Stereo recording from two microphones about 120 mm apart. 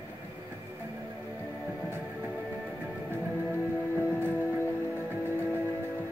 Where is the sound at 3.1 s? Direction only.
15° right (ahead or behind).